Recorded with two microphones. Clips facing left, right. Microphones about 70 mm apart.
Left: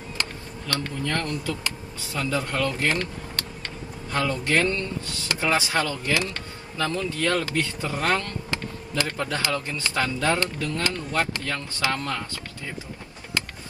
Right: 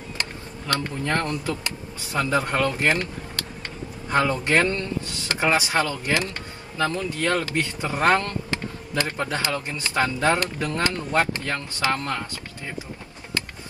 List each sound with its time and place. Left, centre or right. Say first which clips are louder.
0.2 s speech: even; right
4.1 s speech: right 3 dB; right
8.0 s speech: right 5 dB; right
8.5 s speech: right 1 dB; right